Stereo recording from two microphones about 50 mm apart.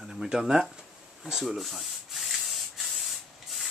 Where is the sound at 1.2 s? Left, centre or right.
Centre.